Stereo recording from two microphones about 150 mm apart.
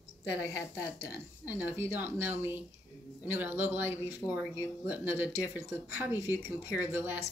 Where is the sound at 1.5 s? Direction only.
15° right (ahead or behind).